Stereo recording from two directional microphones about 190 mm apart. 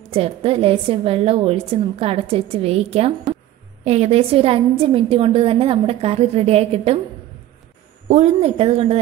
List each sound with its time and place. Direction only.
0.1 s a woman's voice: 30° right (ahead or behind)
8.1 s a woman's voice: 35° right (ahead or behind)